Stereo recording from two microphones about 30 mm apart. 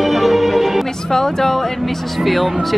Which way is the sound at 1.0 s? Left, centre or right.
Centre.